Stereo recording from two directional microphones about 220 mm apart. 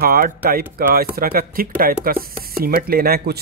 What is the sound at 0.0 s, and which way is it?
Speech, 40° right (ahead or behind).